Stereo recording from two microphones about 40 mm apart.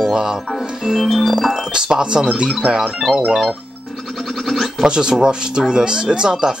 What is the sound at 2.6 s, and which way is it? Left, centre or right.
Speech, centre.